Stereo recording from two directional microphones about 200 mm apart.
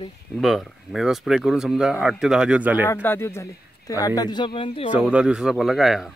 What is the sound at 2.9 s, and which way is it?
Speech, 10° left (ahead or behind).